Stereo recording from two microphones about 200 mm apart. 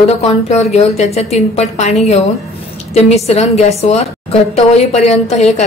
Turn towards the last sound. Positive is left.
turn(degrees=35)  # may be behind; listen again after turning